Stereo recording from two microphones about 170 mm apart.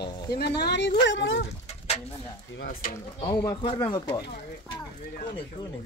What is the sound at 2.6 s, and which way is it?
Speech, 55° left (ahead or behind).